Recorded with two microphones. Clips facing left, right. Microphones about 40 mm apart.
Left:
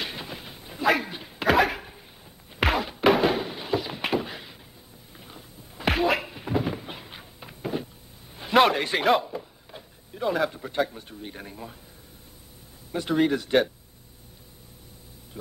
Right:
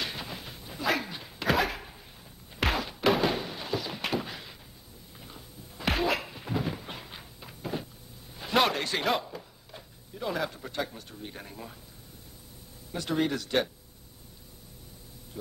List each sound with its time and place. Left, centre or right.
0.0 s a sound: centre
5.1 s cupboard open or close: centre
7.3 s a sound: centre
10.2 s speech: centre
11.0 s speech: left
11.2 s speech: centre
13.1 s speech: centre